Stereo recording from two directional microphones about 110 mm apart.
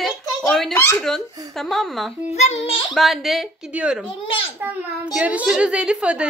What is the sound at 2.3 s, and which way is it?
Speech, 75° left (ahead or behind).